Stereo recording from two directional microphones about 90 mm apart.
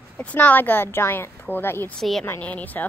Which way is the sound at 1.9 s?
5° left (ahead or behind).